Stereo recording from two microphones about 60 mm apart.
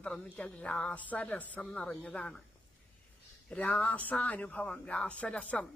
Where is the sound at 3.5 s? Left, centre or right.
Left.